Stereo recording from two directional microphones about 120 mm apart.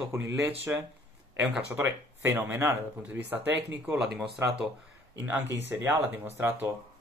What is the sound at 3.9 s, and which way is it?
Speech, 10° right (ahead or behind).